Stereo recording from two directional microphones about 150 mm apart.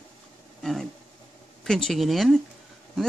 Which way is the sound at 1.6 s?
5° left (ahead or behind).